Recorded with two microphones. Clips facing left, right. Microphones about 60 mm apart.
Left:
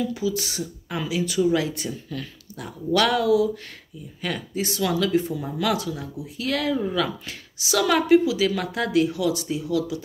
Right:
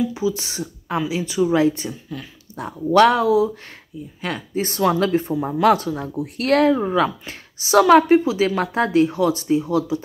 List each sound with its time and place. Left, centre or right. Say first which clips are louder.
0.0 s speech: right 3 dB; right
1.9 s speech: even; centre
2.5 s speech: right 7 dB; right
4.6 s speech: right 6 dB; right
6.2 s speech: right 9 dB; right
6.6 s speech: right 5 dB; right